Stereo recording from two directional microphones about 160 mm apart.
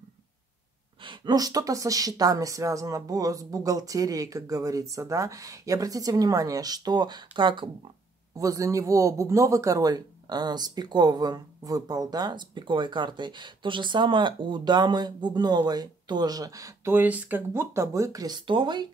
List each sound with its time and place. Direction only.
1.0 s a man's voice: 30° right (ahead or behind)
8.4 s a man's voice: 20° right (ahead or behind)